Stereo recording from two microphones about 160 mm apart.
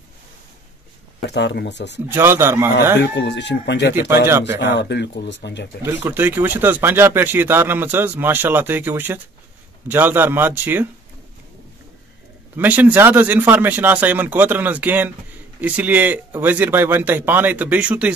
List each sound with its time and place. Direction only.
1.3 s speech: 90° left
2.0 s speech: 15° right (ahead or behind)
3.0 s speech: 90° left
4.3 s speech: 15° right (ahead or behind)
4.6 s speech: 90° left
5.9 s speech: 15° right (ahead or behind)
12.5 s speech: 10° right (ahead or behind)